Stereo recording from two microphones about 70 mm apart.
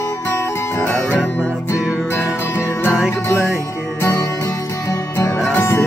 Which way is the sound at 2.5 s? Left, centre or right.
Left.